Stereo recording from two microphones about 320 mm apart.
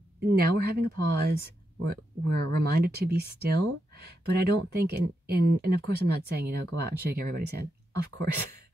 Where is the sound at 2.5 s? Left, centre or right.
Right.